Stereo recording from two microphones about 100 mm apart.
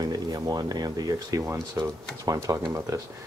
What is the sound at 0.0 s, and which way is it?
Speech, 40° right (ahead or behind).